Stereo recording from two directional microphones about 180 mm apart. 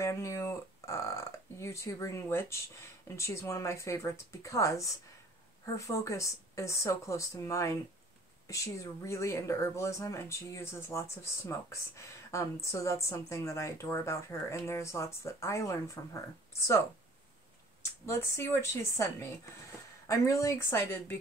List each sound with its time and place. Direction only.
0.0 s speech: 15° left (ahead or behind)
18.0 s speech: 15° left (ahead or behind)